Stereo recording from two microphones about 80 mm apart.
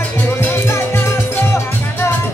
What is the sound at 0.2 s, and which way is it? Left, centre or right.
Music, left.